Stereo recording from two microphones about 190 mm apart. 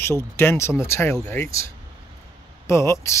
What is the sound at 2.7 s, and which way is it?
Speech, 15° left (ahead or behind).